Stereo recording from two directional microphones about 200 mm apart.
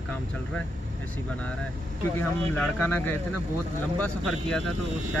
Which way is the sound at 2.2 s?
10° left (ahead or behind).